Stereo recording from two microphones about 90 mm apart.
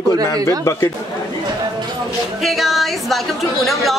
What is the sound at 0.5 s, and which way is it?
Speech, 30° left (ahead or behind).